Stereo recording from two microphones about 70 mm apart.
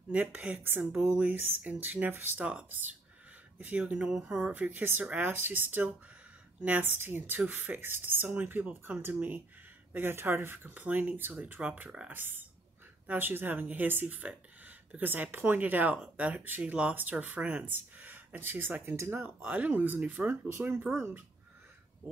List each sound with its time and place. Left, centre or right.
0.1 s speech: right
20.9 s speech: centre